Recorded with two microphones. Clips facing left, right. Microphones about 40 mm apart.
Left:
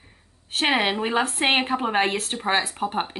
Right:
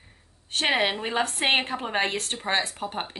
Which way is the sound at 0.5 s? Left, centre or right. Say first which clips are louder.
Left 2 dB; centre.